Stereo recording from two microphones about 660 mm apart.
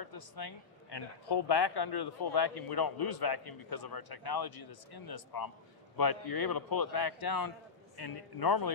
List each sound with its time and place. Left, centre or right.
0.0 s speech: left